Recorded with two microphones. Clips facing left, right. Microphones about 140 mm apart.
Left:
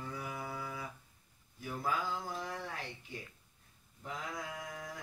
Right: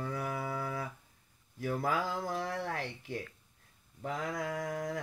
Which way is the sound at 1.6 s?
75° right (ahead or behind).